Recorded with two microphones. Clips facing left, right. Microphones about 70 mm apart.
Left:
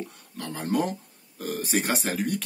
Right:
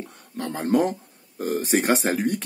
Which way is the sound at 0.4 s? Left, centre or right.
Right.